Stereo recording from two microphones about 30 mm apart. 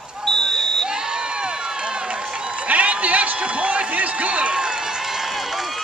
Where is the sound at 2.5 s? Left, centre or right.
Right.